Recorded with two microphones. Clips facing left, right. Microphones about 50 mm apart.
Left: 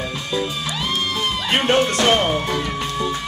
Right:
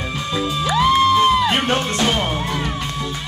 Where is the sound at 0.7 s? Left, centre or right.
Right.